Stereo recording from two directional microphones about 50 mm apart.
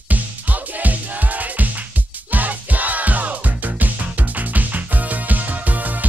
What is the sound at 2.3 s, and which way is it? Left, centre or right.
Music, right.